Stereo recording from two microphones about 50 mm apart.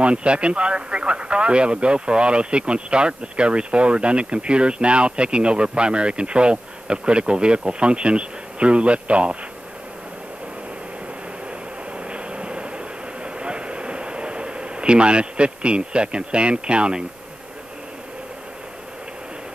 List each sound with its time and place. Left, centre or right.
0.0 s speech: right
12.0 s vehicle: right